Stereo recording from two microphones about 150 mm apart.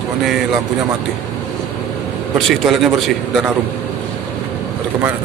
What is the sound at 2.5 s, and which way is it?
Speech, centre (ahead or behind).